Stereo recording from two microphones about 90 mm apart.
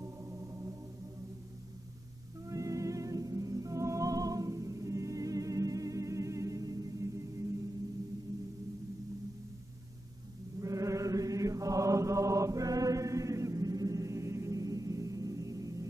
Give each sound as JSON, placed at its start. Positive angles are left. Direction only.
{"t": 0.0, "sound": "music", "side_deg": -35}
{"t": 2.4, "sound": "music", "side_deg": -40}
{"t": 10.6, "sound": "chant", "side_deg": -35}